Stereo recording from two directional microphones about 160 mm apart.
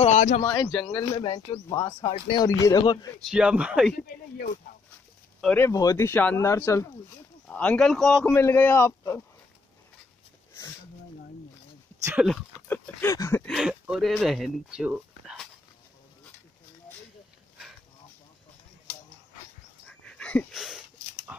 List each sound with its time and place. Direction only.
0.0 s a sound: 45° left (ahead or behind)
0.5 s speech: 25° left (ahead or behind)
3.3 s speech: 5° right (ahead or behind)
5.4 s speech: 5° left (ahead or behind)
5.7 s speech: 20° left (ahead or behind)
7.4 s speech: 10° left (ahead or behind)
8.3 s speech: 15° left (ahead or behind)
12.6 s speech: 10° left (ahead or behind)
13.5 s speech: 5° right (ahead or behind)
19.9 s dog: 5° left (ahead or behind)